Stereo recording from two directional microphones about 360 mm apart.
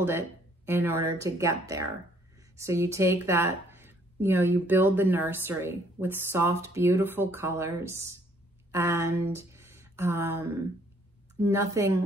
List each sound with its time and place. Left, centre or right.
0.7 s speech: centre
8.7 s a sound: centre
11.3 s speech: centre